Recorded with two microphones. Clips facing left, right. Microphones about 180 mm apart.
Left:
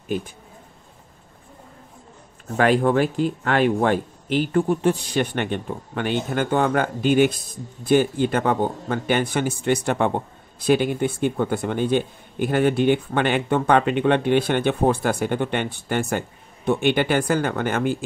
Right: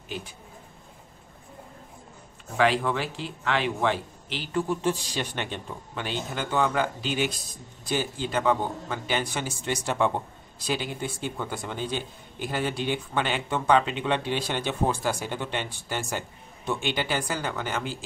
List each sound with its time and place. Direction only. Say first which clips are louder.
2.5 s speech: left 6 dB; 50° left (ahead or behind)